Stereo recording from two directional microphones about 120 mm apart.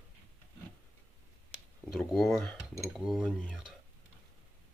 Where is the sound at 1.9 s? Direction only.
Centre (ahead or behind).